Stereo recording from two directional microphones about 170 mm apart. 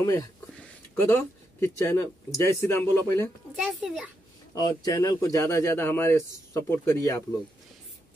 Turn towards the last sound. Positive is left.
turn(degrees=15)  # may be behind; listen again after turning